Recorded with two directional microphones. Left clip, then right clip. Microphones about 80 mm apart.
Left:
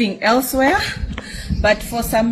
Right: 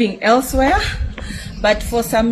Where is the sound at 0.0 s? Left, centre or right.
Centre.